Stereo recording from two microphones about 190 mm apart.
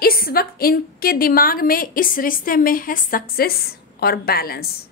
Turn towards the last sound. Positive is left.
turn(degrees=55)  # may be behind; listen again after turning